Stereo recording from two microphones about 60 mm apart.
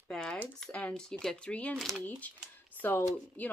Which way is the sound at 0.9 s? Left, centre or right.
Centre.